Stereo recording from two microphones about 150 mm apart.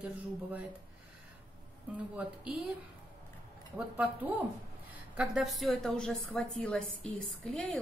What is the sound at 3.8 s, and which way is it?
A woman's voice, 10° right (ahead or behind).